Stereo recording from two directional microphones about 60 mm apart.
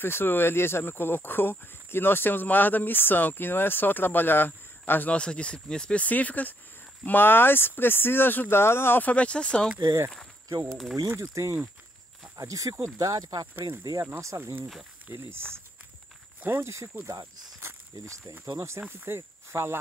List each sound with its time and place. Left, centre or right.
0.0 s speech: left
5.1 s speech: centre
6.0 s speech: left
9.0 s speech: left
10.7 s speech: centre
11.1 s speech: right
12.4 s speech: right
13.0 s speech: right
14.3 s speech: right
16.3 s snake: right
16.6 s speech: right
18.3 s speech: right
18.8 s speech: right